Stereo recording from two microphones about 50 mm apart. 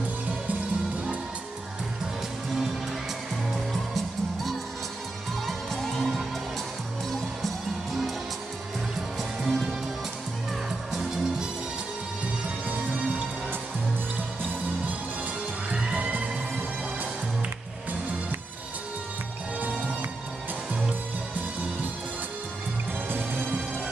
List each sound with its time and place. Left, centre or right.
3.9 s music: centre
9.4 s music: centre
10.9 s music: centre
15.7 s music: right
23.0 s music: right